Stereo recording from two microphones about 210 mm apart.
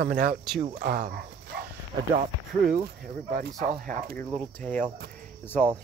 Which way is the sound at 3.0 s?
40° right (ahead or behind).